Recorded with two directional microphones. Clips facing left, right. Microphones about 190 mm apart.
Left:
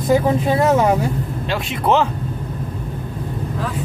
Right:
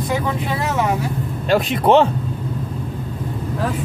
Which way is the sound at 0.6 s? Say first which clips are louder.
Left 7 dB; 45° left (ahead or behind).